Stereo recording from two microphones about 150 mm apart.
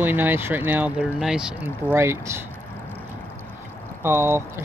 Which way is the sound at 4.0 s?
15° right (ahead or behind).